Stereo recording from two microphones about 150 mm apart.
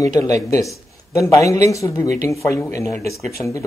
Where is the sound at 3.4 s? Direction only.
30° left (ahead or behind).